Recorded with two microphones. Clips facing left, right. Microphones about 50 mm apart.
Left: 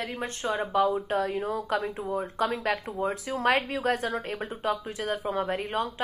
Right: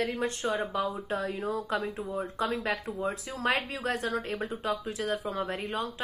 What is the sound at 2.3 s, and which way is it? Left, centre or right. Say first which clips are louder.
Speech: left 2 dB; left.